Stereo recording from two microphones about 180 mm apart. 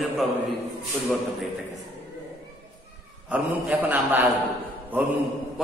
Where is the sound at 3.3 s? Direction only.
10° right (ahead or behind).